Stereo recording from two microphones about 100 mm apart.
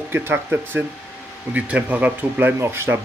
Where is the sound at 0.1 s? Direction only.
20° right (ahead or behind).